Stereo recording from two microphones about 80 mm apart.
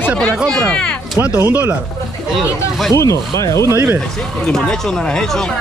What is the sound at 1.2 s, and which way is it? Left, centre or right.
Speech, right.